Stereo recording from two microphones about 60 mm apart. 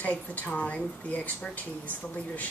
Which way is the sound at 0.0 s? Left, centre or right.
Left.